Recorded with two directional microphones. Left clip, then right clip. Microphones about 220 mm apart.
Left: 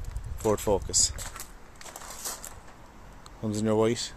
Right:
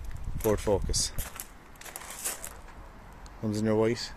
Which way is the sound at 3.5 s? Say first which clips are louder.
Left 1 dB; 5° left (ahead or behind).